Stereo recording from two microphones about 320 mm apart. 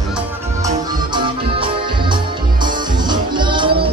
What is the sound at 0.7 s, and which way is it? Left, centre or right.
Music, centre.